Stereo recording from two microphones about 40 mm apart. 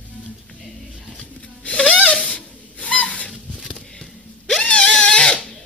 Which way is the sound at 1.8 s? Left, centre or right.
Left.